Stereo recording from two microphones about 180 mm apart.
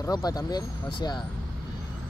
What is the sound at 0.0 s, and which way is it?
Speech, 20° left (ahead or behind).